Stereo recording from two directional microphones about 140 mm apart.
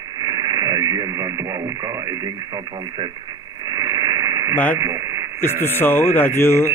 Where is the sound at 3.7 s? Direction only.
25° right (ahead or behind).